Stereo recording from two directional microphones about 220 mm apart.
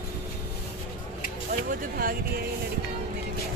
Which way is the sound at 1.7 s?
40° right (ahead or behind).